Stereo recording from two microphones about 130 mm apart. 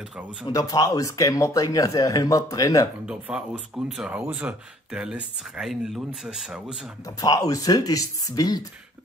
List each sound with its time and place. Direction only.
0.5 s speech: 25° left (ahead or behind)
3.1 s speech: 10° right (ahead or behind)
7.2 s speech: 30° left (ahead or behind)